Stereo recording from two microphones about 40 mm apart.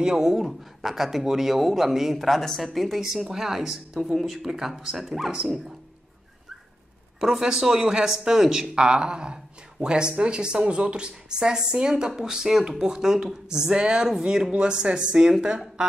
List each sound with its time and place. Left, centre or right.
0.0 s speech: centre
3.0 s speech: centre
7.2 s speech: centre
8.8 s speech: right